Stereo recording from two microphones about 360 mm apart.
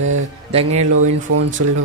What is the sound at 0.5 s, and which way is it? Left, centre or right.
Speech, centre.